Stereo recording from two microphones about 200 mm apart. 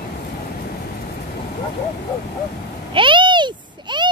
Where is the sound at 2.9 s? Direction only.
25° right (ahead or behind).